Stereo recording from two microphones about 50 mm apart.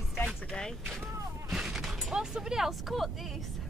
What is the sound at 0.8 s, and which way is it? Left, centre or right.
Vehicle, centre.